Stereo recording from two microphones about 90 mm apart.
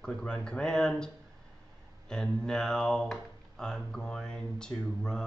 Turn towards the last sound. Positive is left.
turn(degrees=10)  # may be behind; listen again after turning